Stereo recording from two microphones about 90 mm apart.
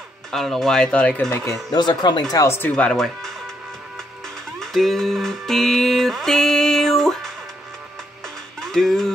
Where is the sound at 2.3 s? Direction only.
25° left (ahead or behind).